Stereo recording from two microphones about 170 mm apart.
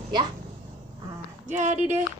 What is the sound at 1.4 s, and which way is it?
Speech, 45° right (ahead or behind).